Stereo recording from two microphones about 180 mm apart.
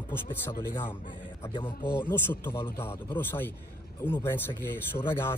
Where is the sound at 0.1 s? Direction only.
10° left (ahead or behind).